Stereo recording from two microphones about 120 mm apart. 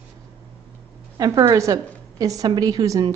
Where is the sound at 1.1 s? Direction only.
30° right (ahead or behind).